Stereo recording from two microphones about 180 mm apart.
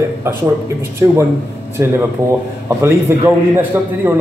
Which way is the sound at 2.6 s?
15° right (ahead or behind).